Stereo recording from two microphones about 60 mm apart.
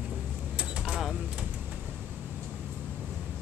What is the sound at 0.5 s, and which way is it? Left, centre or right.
Mechanisms, centre.